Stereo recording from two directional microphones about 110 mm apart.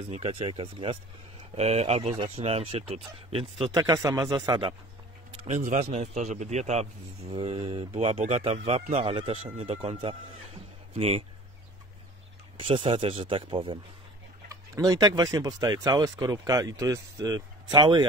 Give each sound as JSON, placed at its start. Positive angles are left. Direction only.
{"t": 0.1, "sound": "speech", "side_deg": -60}
{"t": 1.5, "sound": "speech", "side_deg": -70}
{"t": 3.7, "sound": "speech", "side_deg": -30}
{"t": 5.4, "sound": "a man's voice", "side_deg": -80}
{"t": 7.3, "sound": "speech", "side_deg": -60}
{"t": 12.5, "sound": "speech", "side_deg": -55}
{"t": 14.5, "sound": "speech", "side_deg": -35}
{"t": 17.7, "sound": "speech", "side_deg": -45}